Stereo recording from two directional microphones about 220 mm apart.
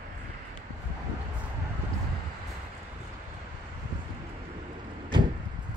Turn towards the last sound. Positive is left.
turn(degrees=-20)  # may be behind; listen again after turning